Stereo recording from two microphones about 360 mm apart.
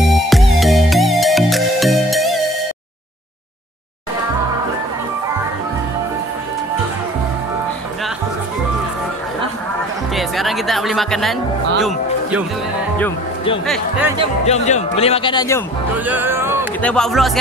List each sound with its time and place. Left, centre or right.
0.1 s music: centre
10.1 s music: centre
11.8 s speech: centre
14.4 s speech: centre
16.1 s music: centre
16.8 s speech: centre